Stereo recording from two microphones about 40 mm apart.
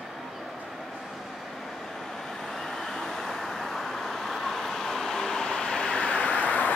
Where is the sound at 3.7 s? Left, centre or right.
Centre.